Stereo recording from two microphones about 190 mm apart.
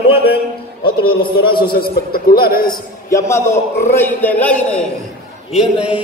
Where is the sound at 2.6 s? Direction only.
15° left (ahead or behind).